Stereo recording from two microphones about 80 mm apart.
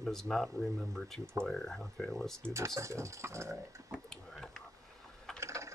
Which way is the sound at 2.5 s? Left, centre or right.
Right.